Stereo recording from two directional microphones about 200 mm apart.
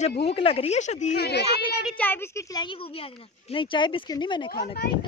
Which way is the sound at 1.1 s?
55° left (ahead or behind).